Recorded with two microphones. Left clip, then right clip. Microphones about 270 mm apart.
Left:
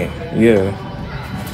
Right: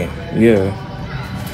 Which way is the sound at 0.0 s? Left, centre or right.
Centre.